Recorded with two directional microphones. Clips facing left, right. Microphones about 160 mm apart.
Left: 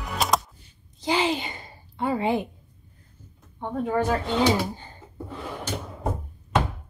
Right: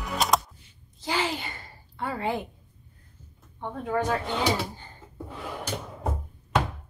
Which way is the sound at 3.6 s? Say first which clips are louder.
Left 3 dB; 10° left (ahead or behind).